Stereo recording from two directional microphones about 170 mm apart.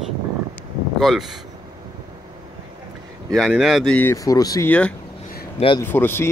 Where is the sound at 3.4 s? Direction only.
Centre (ahead or behind); by 4.7 s 20° left (ahead or behind).